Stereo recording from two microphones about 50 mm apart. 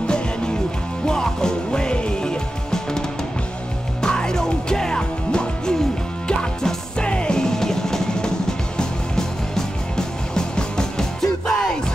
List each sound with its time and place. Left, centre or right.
0.0 s music: centre
4.0 s music: centre